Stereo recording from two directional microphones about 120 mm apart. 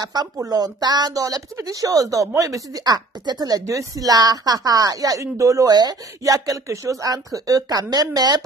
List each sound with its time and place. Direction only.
0.0 s speech: 35° right (ahead or behind)